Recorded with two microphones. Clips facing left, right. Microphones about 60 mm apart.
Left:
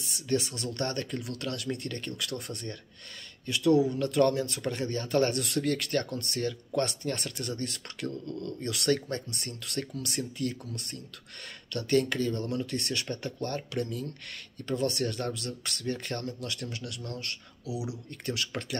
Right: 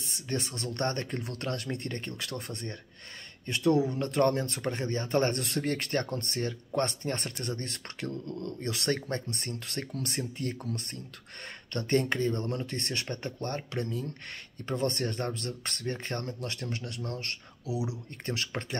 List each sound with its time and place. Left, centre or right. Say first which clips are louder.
0.6 s speech: right 1 dB; right
11.7 s speech: left 1 dB; right